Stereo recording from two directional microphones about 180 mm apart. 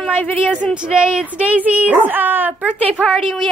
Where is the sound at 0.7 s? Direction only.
5° right (ahead or behind).